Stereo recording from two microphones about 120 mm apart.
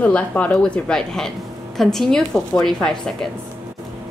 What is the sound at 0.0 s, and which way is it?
A woman's voice, 10° left (ahead or behind).